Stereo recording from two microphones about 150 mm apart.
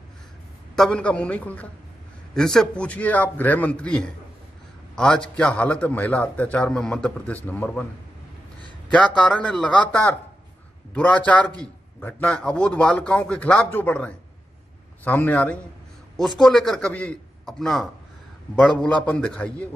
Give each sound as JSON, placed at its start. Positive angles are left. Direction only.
{"t": 0.7, "sound": "a man's voice", "side_deg": 5}
{"t": 8.9, "sound": "a man's voice", "side_deg": 5}